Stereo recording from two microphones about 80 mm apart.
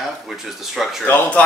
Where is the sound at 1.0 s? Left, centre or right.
Centre.